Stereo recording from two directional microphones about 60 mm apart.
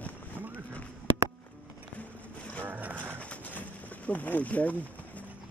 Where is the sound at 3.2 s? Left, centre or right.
Left.